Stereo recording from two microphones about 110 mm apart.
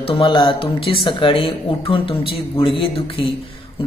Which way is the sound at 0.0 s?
55° left (ahead or behind).